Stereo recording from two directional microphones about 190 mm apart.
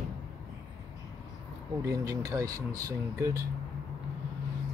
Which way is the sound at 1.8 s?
15° right (ahead or behind).